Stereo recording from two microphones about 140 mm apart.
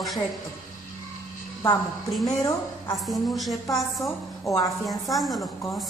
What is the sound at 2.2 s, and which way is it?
Speech, 25° left (ahead or behind).